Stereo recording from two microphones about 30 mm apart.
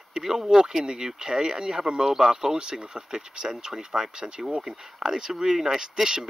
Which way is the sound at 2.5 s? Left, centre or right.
Right.